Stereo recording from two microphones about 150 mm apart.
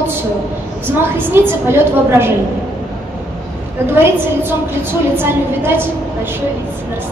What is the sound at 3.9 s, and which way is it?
A woman's voice, 15° right (ahead or behind).